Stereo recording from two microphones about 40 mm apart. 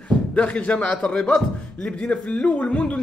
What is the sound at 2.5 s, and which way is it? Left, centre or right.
Speech, left.